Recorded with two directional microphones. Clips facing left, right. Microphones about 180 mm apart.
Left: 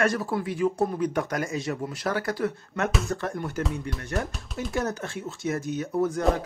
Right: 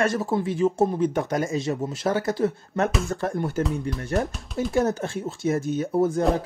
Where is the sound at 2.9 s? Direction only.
Centre (ahead or behind).